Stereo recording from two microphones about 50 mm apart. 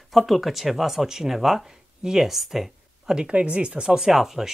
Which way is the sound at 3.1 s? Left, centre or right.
Right.